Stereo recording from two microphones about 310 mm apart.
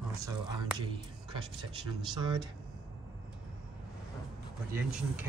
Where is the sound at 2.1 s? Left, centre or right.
Centre.